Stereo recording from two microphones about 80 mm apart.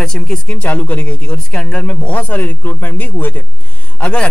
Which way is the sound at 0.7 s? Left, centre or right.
Centre.